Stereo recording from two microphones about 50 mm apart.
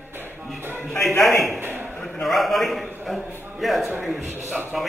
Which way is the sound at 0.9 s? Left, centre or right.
Left.